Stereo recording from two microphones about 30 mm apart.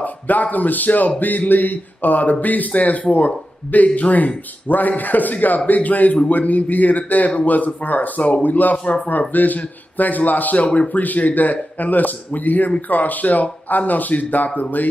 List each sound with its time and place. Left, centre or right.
0.0 s speech: left
4.6 s speech: left
8.4 s speech: left
8.8 s speech: left
9.3 s speech: left